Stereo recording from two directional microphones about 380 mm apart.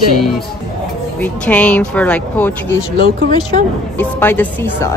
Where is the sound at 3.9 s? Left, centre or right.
Centre.